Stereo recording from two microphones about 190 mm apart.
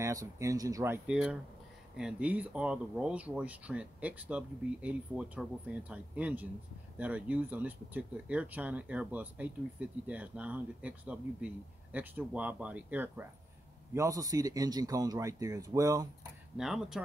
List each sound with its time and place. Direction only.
0.0 s speech: 15° right (ahead or behind)
16.5 s speech: centre (ahead or behind)